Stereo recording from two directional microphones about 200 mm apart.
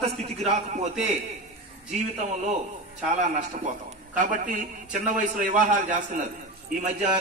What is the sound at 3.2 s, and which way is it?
A man's voice, 35° right (ahead or behind).